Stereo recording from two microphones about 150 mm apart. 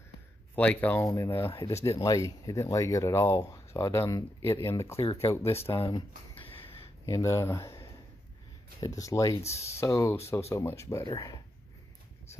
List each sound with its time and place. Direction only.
0.6 s speech: 10° left (ahead or behind)
6.3 s a sound: 35° left (ahead or behind)
7.1 s speech: 20° left (ahead or behind)
8.8 s speech: 20° left (ahead or behind)